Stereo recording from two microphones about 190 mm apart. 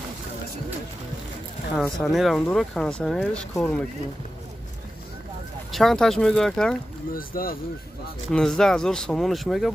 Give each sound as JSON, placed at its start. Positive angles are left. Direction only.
{"t": 1.8, "sound": "speech", "side_deg": 0}
{"t": 5.7, "sound": "speech", "side_deg": 0}
{"t": 7.2, "sound": "speech", "side_deg": 50}
{"t": 8.3, "sound": "speech", "side_deg": 0}